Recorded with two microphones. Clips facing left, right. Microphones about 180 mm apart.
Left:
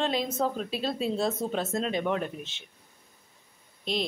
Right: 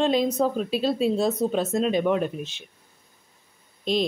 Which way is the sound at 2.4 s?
20° left (ahead or behind).